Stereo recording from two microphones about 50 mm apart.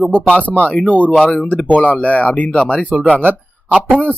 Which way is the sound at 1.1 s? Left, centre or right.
Centre.